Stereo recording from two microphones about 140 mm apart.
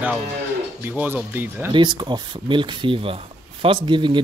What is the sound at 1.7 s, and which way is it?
Speech, 35° right (ahead or behind).